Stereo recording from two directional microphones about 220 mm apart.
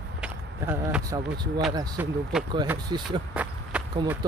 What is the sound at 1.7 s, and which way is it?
Speech, 20° right (ahead or behind).